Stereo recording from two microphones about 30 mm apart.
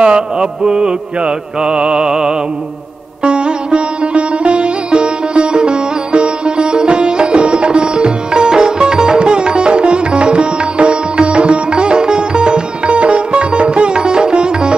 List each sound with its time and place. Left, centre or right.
0.0 s mantra: right
3.3 s sitar: right